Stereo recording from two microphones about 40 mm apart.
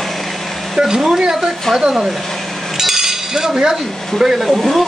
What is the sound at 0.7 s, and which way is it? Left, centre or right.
Speech, centre.